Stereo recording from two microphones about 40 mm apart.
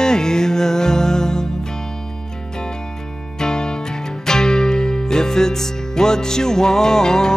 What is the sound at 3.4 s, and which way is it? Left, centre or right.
Music, centre.